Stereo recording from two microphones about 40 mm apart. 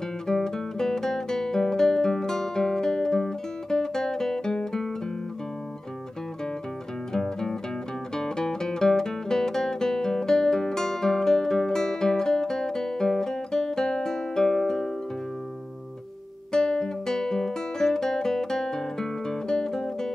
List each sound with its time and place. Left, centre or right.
0.3 s guitar: centre
7.1 s music: centre
16.5 s guitar: centre